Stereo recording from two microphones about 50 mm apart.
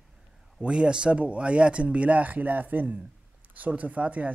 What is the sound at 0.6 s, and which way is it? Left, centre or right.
Speech, centre.